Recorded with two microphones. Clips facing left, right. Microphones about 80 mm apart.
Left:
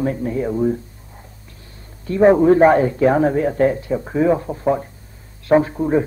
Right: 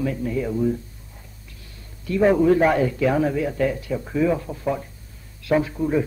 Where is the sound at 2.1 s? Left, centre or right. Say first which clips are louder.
Left 5 dB; left.